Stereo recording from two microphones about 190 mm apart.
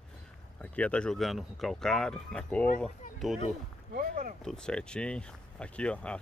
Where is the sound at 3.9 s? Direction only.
45° right (ahead or behind).